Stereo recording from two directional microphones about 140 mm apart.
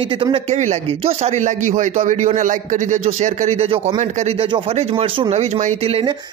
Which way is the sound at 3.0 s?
50° right (ahead or behind).